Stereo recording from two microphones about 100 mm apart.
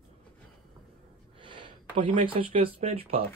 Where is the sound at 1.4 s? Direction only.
55° right (ahead or behind); by 3.2 s 90° right.